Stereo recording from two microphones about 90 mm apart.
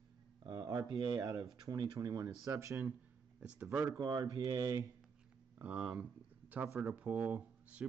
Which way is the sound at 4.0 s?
50° right (ahead or behind).